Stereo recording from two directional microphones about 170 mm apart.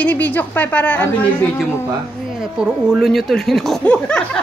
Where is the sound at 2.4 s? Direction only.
5° right (ahead or behind).